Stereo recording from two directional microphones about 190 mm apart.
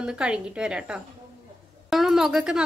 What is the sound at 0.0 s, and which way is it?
A woman's voice, 5° right (ahead or behind).